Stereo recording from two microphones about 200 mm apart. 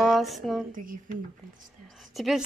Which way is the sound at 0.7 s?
45° right (ahead or behind).